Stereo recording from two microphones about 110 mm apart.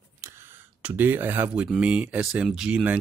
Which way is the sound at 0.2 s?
20° right (ahead or behind).